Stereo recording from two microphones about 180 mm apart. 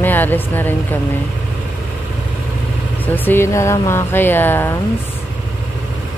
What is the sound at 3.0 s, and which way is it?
Speech, 10° left (ahead or behind).